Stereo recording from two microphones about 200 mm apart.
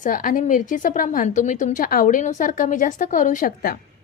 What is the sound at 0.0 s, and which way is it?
A woman's voice, 45° left (ahead or behind).